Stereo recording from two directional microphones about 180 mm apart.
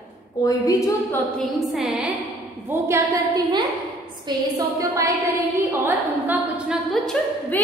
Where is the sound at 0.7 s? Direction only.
15° left (ahead or behind).